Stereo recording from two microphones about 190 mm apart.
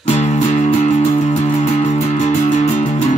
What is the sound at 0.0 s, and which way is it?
Music, 35° left (ahead or behind).